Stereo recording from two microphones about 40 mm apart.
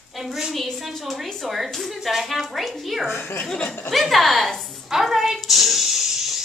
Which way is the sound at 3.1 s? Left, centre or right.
Left.